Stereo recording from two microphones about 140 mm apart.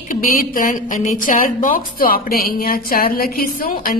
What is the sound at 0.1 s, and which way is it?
A woman's voice, 75° left (ahead or behind).